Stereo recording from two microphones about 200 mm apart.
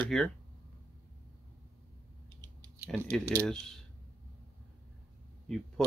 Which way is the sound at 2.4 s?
20° right (ahead or behind).